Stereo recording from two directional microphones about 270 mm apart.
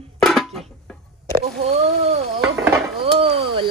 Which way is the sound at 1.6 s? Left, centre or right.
Right.